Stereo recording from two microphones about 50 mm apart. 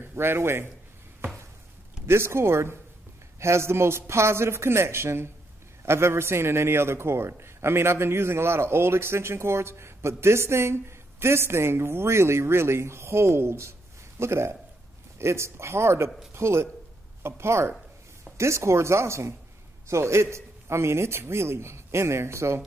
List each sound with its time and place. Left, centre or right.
0.0 s a man's voice: right
2.0 s a man's voice: right